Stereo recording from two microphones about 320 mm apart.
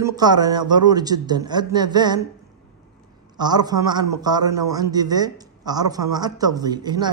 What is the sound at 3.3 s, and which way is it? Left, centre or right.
A woman's voice, centre.